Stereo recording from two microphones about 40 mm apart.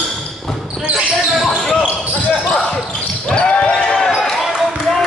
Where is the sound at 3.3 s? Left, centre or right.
Centre.